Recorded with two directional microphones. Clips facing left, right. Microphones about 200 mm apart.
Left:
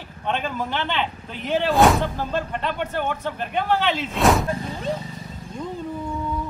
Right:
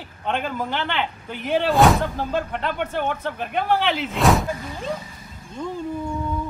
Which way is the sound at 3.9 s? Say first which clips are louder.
Even; centre (ahead or behind).